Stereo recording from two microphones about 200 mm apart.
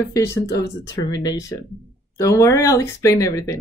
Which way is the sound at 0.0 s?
15° left (ahead or behind).